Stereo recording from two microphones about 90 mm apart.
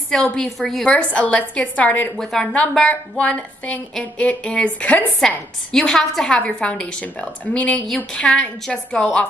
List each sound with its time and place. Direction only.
0.1 s a woman's voice: 10° left (ahead or behind)
0.8 s a woman's voice: 15° left (ahead or behind)
5.7 s a woman's voice: 5° left (ahead or behind)